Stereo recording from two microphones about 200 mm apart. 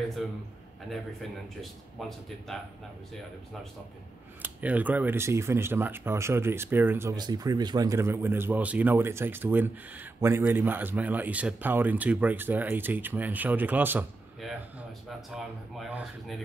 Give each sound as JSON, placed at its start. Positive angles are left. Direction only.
{"t": 0.2, "sound": "speech", "side_deg": 0}
{"t": 1.6, "sound": "speech", "side_deg": 0}
{"t": 4.4, "sound": "speech", "side_deg": -10}